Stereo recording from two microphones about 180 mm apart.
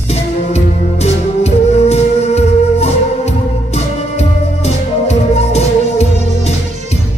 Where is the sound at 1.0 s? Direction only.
35° left (ahead or behind).